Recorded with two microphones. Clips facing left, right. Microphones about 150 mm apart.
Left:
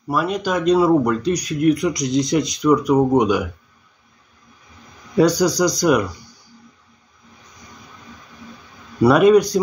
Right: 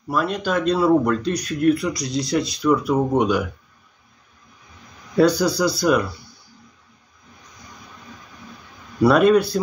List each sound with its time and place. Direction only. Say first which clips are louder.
0.1 s speech: left 1 dB; 10° left (ahead or behind)
5.1 s speech: left 1 dB; 15° left (ahead or behind)
9.0 s speech: left 2 dB; 10° left (ahead or behind)